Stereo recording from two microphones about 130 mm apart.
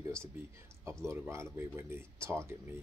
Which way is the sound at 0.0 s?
20° right (ahead or behind).